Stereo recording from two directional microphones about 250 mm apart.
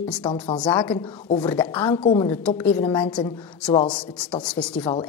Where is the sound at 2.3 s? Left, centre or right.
Centre.